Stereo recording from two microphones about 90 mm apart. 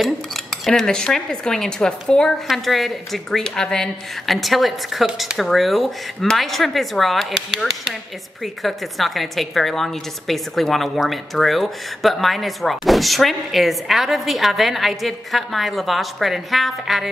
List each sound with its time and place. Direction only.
0.7 s a woman's voice: 5° left (ahead or behind)
8.6 s a woman's voice: centre (ahead or behind)